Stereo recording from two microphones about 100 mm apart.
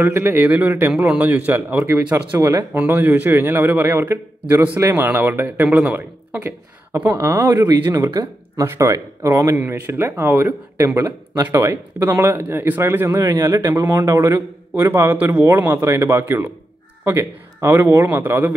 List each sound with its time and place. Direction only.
0.0 s a man's voice: 20° right (ahead or behind)
2.3 s speech: 35° right (ahead or behind)
2.9 s speech: 20° right (ahead or behind)
6.4 s speech: 25° right (ahead or behind)
7.6 s speech: 35° right (ahead or behind)
11.5 s speech: 25° right (ahead or behind)
13.3 s speech: 40° right (ahead or behind); by 18.5 s 20° right (ahead or behind)